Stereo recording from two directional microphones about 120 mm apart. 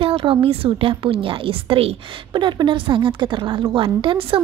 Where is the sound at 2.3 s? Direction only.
40° right (ahead or behind).